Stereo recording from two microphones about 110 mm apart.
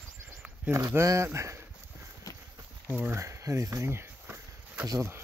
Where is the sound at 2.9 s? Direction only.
15° right (ahead or behind).